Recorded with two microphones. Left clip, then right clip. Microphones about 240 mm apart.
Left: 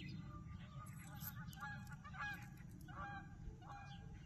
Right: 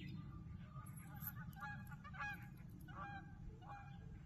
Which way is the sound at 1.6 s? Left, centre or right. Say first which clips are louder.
Even; right.